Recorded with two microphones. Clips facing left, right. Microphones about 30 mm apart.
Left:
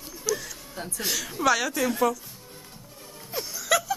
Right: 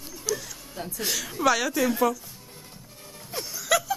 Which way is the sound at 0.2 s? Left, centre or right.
Centre.